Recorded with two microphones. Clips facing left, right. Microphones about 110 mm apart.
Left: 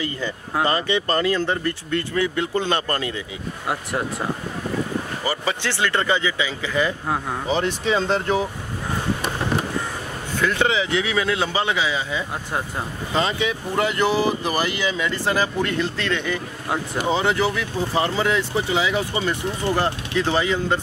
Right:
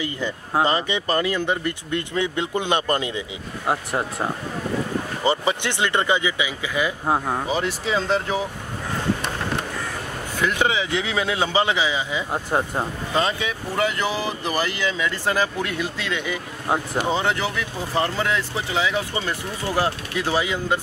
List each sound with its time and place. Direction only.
0.0 s speech: 20° right (ahead or behind)
7.1 s speech: 25° right (ahead or behind)
7.4 s speech: 5° right (ahead or behind)
10.4 s speech: 15° right (ahead or behind)
12.3 s speech: 35° right (ahead or behind)
13.1 s speech: centre (ahead or behind)
17.0 s speech: centre (ahead or behind)
19.7 s speech: 10° right (ahead or behind)